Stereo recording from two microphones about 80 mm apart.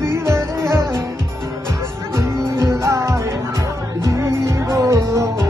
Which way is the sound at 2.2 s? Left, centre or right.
Right.